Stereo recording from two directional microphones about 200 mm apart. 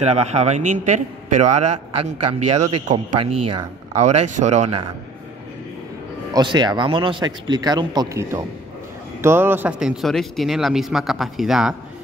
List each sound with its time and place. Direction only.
0.0 s a man's voice: 35° right (ahead or behind)
6.3 s speech: 20° right (ahead or behind); by 11.7 s centre (ahead or behind)